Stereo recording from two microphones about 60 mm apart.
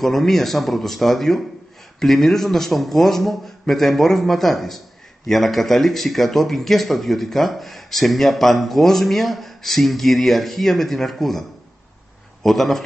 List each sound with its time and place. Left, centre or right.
0.0 s a man's voice: centre
12.4 s a man's voice: centre